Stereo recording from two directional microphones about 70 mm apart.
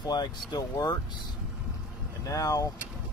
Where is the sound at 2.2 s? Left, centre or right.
Left.